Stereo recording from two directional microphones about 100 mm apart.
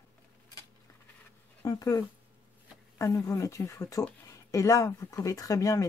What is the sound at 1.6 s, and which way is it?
Speech, 35° left (ahead or behind).